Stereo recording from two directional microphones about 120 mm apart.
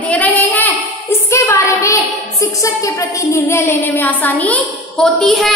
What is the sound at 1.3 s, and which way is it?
Child singing, 25° left (ahead or behind).